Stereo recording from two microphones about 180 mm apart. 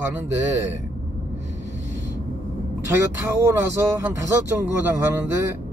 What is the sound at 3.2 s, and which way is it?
Speech, 15° right (ahead or behind).